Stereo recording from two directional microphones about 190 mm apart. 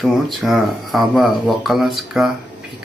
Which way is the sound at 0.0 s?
Centre (ahead or behind).